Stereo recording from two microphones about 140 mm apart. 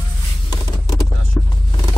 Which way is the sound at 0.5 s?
25° left (ahead or behind).